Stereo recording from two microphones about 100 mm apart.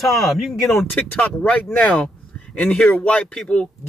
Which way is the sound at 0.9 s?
20° left (ahead or behind).